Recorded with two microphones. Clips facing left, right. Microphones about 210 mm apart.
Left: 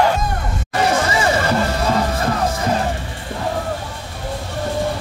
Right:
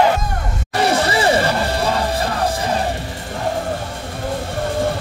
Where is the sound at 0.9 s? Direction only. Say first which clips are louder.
Right 2 dB; 35° right (ahead or behind).